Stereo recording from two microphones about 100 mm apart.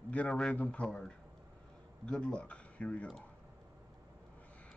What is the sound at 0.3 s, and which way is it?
A man's voice, centre (ahead or behind).